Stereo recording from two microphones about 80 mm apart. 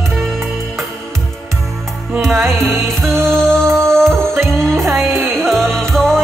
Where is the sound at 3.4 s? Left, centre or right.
Right.